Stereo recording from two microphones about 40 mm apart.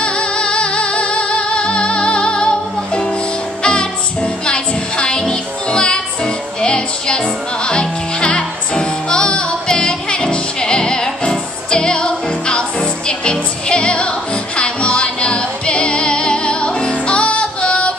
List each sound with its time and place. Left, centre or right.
0.0 s music: left